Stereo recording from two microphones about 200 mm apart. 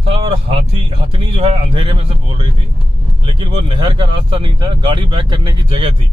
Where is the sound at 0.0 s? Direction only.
25° right (ahead or behind).